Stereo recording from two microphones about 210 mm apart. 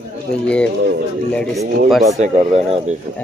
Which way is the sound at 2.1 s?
35° right (ahead or behind).